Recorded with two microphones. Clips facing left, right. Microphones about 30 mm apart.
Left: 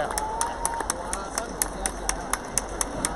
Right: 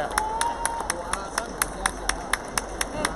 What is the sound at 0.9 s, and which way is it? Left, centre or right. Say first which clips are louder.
Run: right 2 dB; right.